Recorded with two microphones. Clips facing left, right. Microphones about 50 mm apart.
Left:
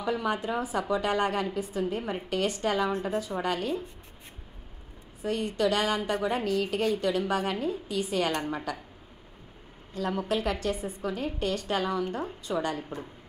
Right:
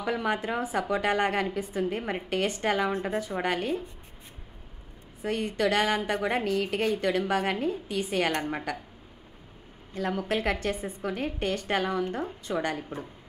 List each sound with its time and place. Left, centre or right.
0.0 s a woman's voice: right
5.2 s a woman's voice: right
10.2 s a woman's voice: right